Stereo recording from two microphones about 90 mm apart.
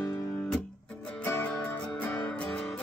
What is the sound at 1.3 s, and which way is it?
Music, 25° left (ahead or behind).